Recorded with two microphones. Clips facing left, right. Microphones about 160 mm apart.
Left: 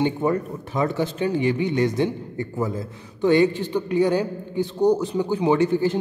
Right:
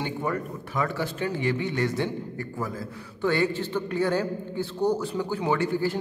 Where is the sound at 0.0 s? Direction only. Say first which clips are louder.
Left 7 dB; 25° left (ahead or behind).